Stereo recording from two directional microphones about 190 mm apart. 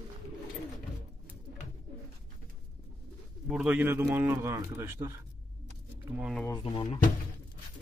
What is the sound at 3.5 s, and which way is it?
A man's voice, 5° right (ahead or behind).